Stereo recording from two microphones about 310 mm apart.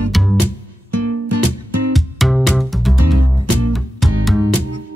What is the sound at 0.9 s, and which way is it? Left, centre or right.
Music, right.